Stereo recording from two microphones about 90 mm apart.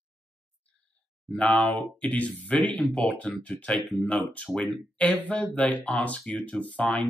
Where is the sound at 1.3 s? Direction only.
15° left (ahead or behind).